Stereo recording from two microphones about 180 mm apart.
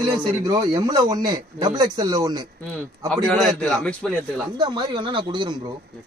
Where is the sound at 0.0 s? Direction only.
20° right (ahead or behind).